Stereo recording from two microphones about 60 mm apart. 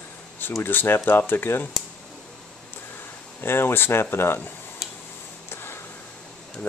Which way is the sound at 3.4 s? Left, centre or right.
Left.